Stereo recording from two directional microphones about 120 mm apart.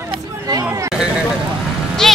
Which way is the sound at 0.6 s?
25° right (ahead or behind).